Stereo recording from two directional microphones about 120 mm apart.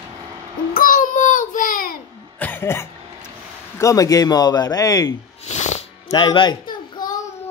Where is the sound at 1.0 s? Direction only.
90° left.